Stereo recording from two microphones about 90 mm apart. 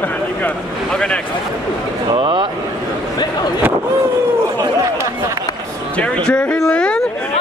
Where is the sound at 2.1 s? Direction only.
60° right (ahead or behind).